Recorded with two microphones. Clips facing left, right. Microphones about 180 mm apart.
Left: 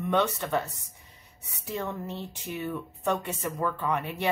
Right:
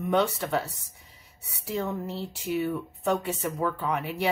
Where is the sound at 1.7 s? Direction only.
5° right (ahead or behind).